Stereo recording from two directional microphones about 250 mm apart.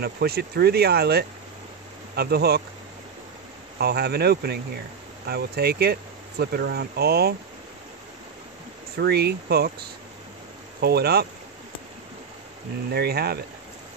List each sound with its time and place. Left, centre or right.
0.0 s speech: right
3.7 s speech: right
8.9 s speech: right
12.9 s speech: right